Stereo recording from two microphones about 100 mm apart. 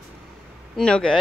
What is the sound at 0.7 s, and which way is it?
Speech, 10° left (ahead or behind).